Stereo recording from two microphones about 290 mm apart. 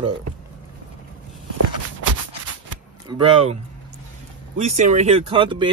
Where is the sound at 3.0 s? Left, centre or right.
Centre.